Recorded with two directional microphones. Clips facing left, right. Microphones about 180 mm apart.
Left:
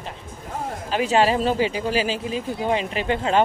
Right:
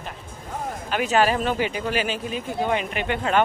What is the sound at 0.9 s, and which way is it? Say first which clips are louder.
Speech: left 2 dB; 30° left (ahead or behind).